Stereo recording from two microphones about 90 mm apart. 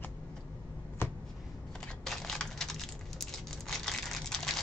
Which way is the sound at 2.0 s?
5° left (ahead or behind).